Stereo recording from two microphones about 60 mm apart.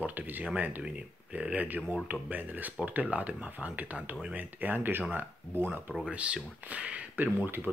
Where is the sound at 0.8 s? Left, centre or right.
Centre.